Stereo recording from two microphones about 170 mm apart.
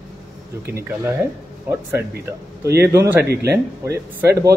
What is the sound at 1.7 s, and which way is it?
Speech, 15° right (ahead or behind).